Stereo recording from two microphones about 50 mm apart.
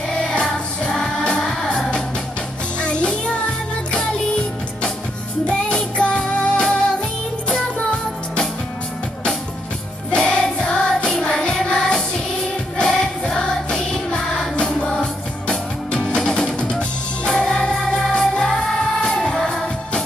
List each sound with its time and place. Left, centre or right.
0.2 s music: centre
2.8 s music: left
5.5 s music: left
10.1 s music: centre